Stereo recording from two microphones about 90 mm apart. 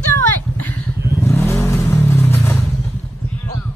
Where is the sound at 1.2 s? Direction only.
30° left (ahead or behind).